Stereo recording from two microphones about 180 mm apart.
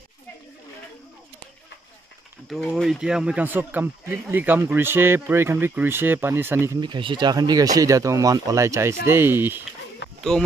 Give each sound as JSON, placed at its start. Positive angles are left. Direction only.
{"t": 2.5, "sound": "speech", "side_deg": 0}
{"t": 6.8, "sound": "speech", "side_deg": -25}
{"t": 10.0, "sound": "a sound", "side_deg": 80}